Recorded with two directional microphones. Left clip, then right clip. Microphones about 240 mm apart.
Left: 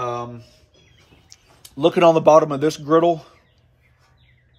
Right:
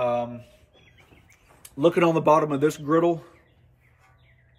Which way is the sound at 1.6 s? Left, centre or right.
Left.